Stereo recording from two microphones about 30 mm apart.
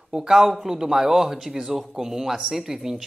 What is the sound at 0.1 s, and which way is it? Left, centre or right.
Speech, right.